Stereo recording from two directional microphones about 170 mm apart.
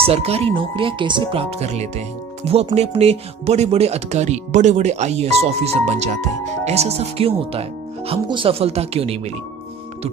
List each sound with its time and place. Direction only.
0.0 s speech: 35° right (ahead or behind)